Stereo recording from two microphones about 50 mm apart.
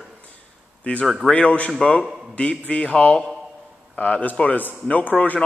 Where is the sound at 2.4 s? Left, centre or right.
Left.